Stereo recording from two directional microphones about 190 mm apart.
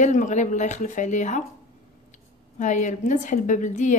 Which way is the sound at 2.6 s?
40° left (ahead or behind).